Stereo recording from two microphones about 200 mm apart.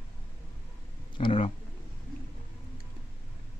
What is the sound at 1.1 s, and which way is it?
Speech, 25° left (ahead or behind).